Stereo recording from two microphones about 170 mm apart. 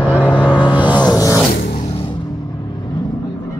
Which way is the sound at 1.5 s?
65° left (ahead or behind).